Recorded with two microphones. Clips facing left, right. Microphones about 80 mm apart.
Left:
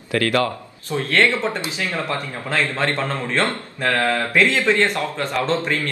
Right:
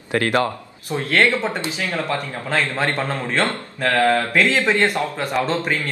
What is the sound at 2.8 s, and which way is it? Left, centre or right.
A man's voice, centre.